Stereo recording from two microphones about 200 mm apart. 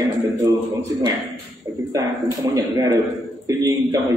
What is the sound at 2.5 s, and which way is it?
A man's voice, 15° right (ahead or behind).